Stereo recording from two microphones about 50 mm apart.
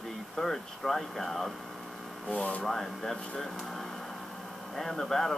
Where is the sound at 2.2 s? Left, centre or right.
Left.